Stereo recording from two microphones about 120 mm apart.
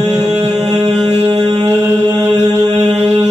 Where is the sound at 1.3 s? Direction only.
40° right (ahead or behind).